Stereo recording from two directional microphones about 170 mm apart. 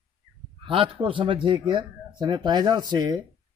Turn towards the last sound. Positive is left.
turn(degrees=-25)  # may be behind; listen again after turning